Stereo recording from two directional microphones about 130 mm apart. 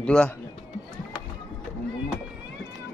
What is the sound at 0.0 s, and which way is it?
Speech, 10° left (ahead or behind).